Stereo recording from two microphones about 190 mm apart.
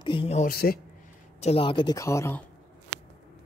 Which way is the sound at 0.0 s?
25° left (ahead or behind).